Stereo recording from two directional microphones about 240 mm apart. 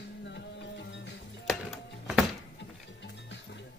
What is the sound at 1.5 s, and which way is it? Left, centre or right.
Music, centre.